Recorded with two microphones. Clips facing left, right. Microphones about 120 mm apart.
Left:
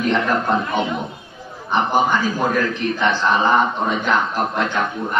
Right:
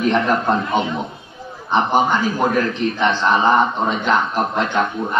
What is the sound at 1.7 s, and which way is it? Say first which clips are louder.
A man's voice: right 1 dB; 20° right (ahead or behind).